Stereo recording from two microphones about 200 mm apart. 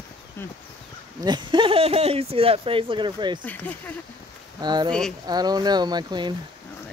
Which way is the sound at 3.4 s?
10° left (ahead or behind).